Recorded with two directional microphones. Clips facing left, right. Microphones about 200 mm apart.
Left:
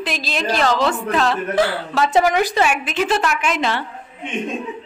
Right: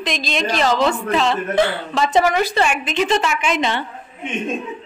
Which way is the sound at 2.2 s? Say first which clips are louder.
Left 1 dB; 15° left (ahead or behind).